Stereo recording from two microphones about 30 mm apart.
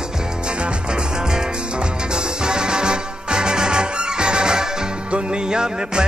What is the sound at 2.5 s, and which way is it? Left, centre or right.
Music, right.